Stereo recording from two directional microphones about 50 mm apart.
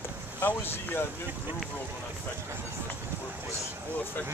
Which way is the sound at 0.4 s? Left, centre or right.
Left.